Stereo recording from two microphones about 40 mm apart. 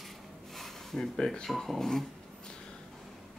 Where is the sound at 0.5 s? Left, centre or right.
Centre.